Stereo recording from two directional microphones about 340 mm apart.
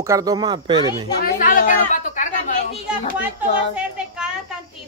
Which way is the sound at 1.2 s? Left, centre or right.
Left.